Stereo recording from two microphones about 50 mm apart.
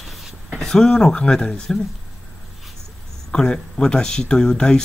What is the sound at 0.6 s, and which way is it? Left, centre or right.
Speech, centre.